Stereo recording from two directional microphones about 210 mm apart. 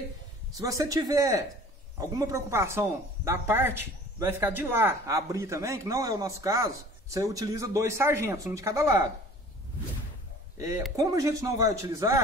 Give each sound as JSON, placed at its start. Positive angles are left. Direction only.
{"t": 0.6, "sound": "speech", "side_deg": -15}
{"t": 11.0, "sound": "speech", "side_deg": -15}